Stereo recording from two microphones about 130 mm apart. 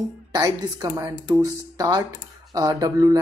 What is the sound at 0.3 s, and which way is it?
A woman's voice, 30° right (ahead or behind).